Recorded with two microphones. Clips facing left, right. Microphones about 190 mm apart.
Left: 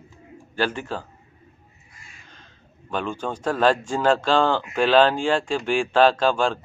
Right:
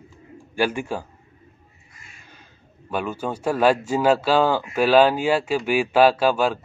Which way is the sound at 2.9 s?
10° right (ahead or behind).